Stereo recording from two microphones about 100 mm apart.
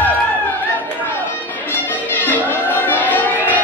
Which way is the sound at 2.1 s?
20° left (ahead or behind).